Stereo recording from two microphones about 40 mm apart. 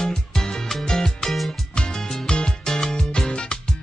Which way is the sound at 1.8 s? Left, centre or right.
Left.